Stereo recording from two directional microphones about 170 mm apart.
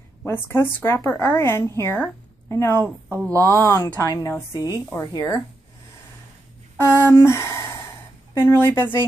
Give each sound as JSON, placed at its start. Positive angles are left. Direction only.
{"t": 0.2, "sound": "a woman's voice", "side_deg": 10}
{"t": 3.2, "sound": "speech", "side_deg": -20}
{"t": 3.5, "sound": "a woman's voice", "side_deg": 15}
{"t": 6.8, "sound": "a woman's voice", "side_deg": 15}